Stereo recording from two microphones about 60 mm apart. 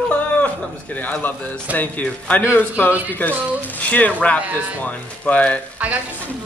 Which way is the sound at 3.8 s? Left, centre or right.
Left.